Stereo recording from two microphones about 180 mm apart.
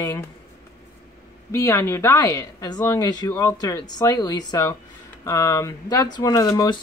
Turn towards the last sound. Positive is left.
turn(degrees=20)  # may be behind; listen again after turning